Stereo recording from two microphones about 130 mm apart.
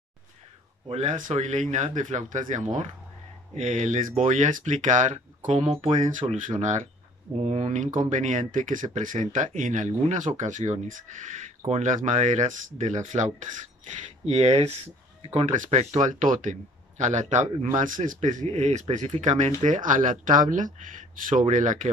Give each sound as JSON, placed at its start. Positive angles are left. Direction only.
{"t": 0.8, "sound": "speech", "side_deg": -55}
{"t": 1.1, "sound": "speech", "side_deg": -80}
{"t": 5.7, "sound": "speech", "side_deg": -45}
{"t": 5.9, "sound": "speech", "side_deg": -70}
{"t": 6.3, "sound": "speech", "side_deg": -80}
{"t": 7.3, "sound": "speech", "side_deg": -55}
{"t": 11.6, "sound": "speech", "side_deg": -55}
{"t": 11.9, "sound": "speech", "side_deg": -65}